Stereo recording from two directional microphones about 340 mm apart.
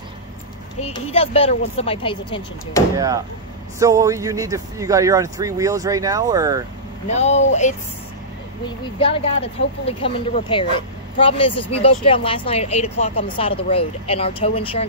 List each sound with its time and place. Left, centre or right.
0.7 s speech: centre
3.8 s speech: centre
7.1 s speech: centre
8.6 s speech: centre